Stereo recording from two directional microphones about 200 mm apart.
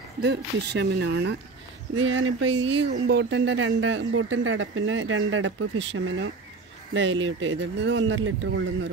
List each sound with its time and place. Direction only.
0.2 s speech: 60° right (ahead or behind)
2.0 s speech: 75° right (ahead or behind)